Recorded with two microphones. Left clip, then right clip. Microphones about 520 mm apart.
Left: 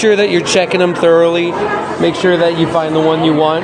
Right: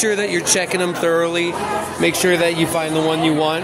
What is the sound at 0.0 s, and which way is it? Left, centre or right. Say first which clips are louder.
Speech: left 8 dB; right.